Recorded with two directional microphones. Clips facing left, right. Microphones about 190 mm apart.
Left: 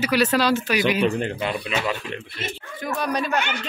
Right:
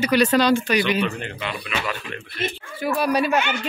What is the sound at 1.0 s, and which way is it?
Speech, 40° left (ahead or behind).